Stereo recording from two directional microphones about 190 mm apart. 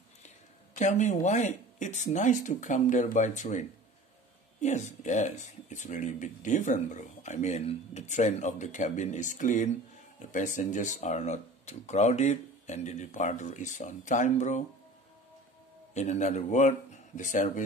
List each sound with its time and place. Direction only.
0.7 s speech: 40° left (ahead or behind)
15.9 s speech: 35° left (ahead or behind)